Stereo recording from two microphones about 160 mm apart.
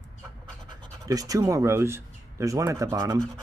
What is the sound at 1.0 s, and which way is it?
Speech, 20° right (ahead or behind).